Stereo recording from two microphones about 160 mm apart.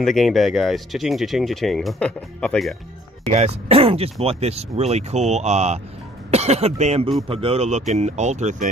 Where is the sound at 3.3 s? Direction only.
45° right (ahead or behind).